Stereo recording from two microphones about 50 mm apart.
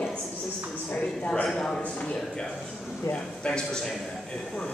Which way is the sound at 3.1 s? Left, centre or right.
Centre.